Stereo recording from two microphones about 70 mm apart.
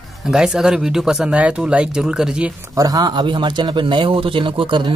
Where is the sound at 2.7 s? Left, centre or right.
Right.